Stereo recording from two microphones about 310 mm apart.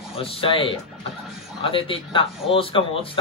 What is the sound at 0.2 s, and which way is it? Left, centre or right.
Speech, centre.